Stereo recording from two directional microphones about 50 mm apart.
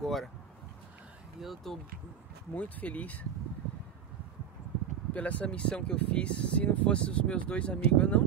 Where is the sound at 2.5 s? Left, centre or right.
Left.